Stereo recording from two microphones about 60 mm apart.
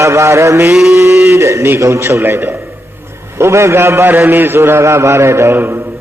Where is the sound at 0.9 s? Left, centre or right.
Right.